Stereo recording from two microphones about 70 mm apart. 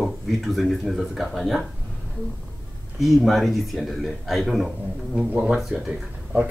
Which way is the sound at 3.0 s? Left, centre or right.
Centre.